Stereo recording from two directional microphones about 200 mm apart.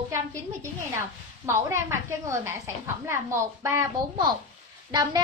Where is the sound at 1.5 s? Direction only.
15° right (ahead or behind).